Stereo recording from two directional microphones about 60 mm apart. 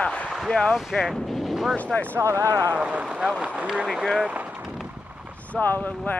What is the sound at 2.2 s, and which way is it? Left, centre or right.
Speech, right.